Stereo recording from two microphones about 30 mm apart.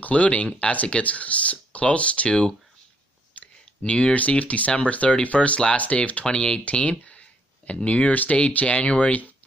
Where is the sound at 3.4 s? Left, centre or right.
Left.